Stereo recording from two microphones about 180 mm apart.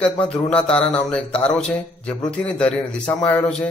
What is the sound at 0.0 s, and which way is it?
A man's voice, 5° left (ahead or behind).